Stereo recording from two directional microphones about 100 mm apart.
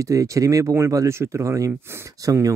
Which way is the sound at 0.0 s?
35° right (ahead or behind).